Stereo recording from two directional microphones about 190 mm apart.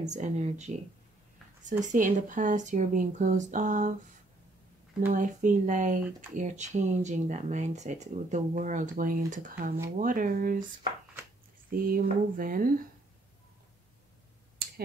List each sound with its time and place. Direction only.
0.1 s speech: 35° right (ahead or behind)
1.9 s speech: 40° right (ahead or behind)
5.1 s speech: 40° right (ahead or behind)
11.7 s speech: 50° right (ahead or behind)